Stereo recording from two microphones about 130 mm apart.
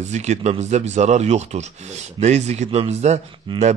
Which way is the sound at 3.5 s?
40° right (ahead or behind).